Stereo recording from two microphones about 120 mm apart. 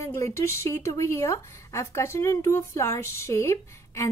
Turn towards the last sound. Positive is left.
turn(degrees=25)  # may be behind; listen again after turning